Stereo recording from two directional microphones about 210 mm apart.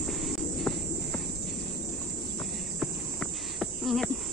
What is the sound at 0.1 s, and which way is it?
Cricket, centre (ahead or behind).